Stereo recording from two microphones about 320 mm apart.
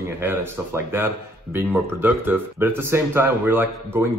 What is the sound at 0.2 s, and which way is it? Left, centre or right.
Speech, centre.